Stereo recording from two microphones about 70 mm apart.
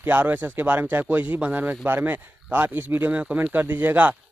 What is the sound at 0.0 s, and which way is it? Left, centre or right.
Speech, right.